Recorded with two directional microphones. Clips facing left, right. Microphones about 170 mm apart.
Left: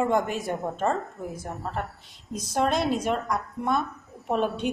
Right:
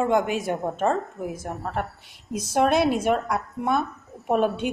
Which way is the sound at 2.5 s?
65° right (ahead or behind).